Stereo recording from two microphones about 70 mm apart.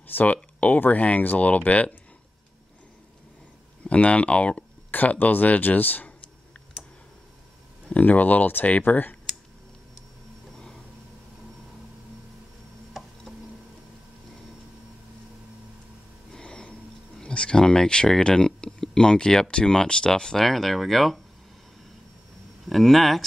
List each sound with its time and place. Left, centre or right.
0.0 s speech: left
3.8 s speech: centre
7.9 s speech: left
16.3 s a sound: centre
17.2 s speech: centre
22.7 s speech: centre